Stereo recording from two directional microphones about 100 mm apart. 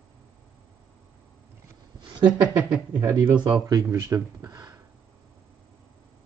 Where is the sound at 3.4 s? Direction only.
40° right (ahead or behind).